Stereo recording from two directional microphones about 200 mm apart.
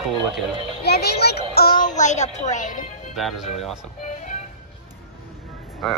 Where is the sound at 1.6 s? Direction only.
45° left (ahead or behind).